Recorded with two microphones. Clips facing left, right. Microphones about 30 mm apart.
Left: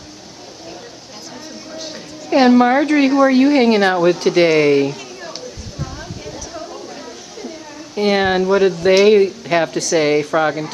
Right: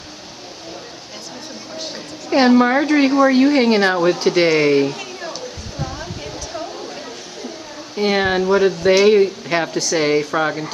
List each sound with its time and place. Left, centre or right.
2.3 s speech: centre
7.9 s speech: centre